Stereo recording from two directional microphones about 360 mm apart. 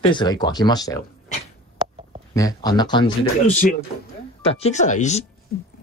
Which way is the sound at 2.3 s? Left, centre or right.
Centre.